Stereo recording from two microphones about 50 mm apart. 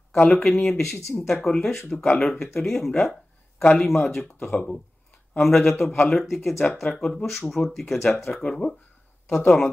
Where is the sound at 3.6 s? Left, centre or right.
Left.